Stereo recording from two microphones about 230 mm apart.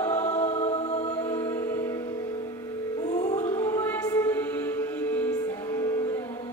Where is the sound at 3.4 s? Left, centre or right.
Centre.